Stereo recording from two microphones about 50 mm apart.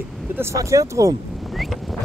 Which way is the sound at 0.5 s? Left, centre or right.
Right.